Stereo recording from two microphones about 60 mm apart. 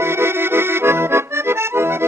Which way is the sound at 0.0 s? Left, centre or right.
Right.